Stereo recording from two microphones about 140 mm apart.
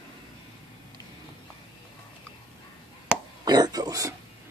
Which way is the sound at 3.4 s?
30° right (ahead or behind).